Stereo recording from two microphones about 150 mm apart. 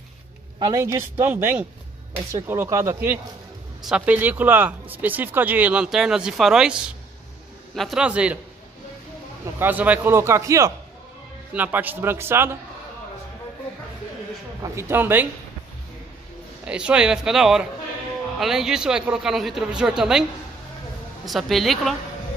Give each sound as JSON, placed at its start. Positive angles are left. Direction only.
{"t": 0.6, "sound": "speech", "side_deg": -25}
{"t": 9.6, "sound": "speech", "side_deg": -10}
{"t": 14.6, "sound": "speech", "side_deg": -15}
{"t": 16.6, "sound": "a man's voice", "side_deg": -5}
{"t": 21.3, "sound": "a man's voice", "side_deg": 0}